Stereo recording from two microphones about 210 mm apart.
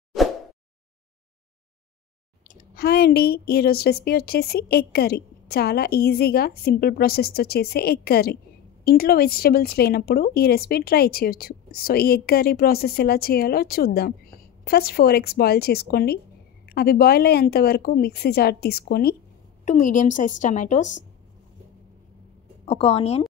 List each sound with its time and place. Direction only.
2.5 s speech: 50° left (ahead or behind)
19.6 s a woman's voice: 35° left (ahead or behind)
22.7 s a woman's voice: 30° left (ahead or behind)